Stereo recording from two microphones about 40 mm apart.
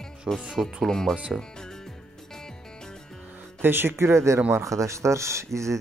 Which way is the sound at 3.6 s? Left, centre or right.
Right.